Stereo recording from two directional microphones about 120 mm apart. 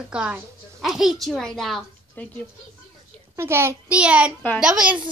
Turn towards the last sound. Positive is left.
turn(degrees=-10)  # may be behind; listen again after turning